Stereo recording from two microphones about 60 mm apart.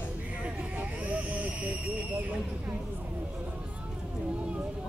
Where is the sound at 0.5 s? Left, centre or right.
Right.